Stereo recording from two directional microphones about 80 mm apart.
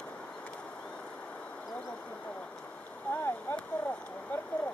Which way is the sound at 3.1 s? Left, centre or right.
Centre.